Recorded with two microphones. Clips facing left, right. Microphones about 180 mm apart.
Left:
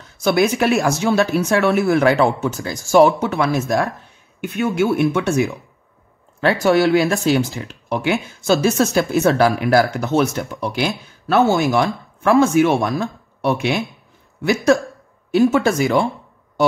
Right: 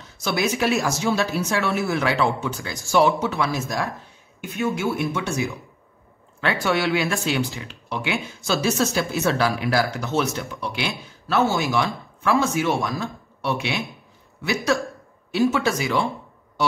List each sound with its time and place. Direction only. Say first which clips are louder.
0.2 s speech: left 7 dB; 55° left (ahead or behind)
6.4 s speech: left 7 dB; 45° left (ahead or behind)